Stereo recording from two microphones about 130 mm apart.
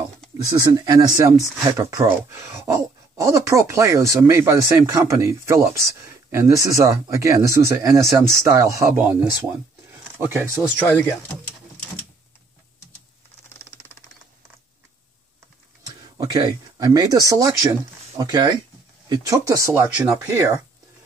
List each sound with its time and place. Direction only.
0.6 s speech: 30° right (ahead or behind)
10.1 s speech: 15° right (ahead or behind)
10.9 s speech: 20° left (ahead or behind)
15.9 s speech: 30° right (ahead or behind)